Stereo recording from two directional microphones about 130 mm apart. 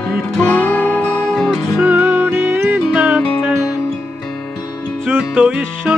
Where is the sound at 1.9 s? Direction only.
15° right (ahead or behind).